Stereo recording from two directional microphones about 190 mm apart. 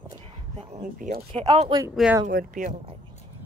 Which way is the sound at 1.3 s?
25° right (ahead or behind).